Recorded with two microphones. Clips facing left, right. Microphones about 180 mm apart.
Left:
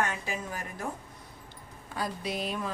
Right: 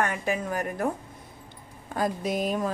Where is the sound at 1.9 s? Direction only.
45° right (ahead or behind).